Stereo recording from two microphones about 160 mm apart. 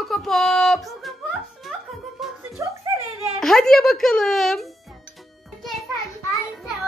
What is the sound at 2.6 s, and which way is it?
Speech, 20° right (ahead or behind).